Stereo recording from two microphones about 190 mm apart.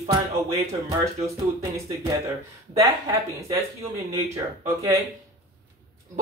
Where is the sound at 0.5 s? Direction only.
15° right (ahead or behind).